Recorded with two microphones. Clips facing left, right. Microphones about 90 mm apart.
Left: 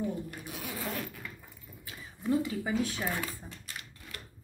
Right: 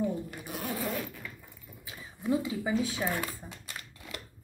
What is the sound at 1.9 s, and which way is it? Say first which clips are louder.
Speech: right 1 dB; 10° right (ahead or behind).